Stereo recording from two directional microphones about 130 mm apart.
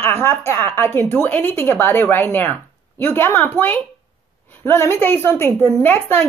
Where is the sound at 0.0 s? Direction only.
15° left (ahead or behind).